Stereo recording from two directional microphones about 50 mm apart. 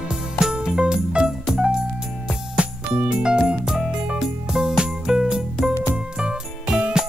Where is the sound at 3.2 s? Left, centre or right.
Centre.